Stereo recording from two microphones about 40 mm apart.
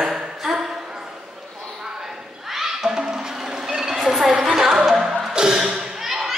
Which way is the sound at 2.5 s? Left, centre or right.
Centre.